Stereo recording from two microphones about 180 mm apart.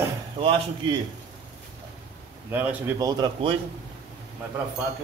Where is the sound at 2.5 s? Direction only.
10° right (ahead or behind).